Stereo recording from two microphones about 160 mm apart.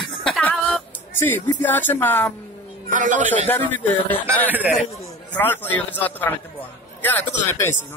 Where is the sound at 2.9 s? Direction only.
55° right (ahead or behind).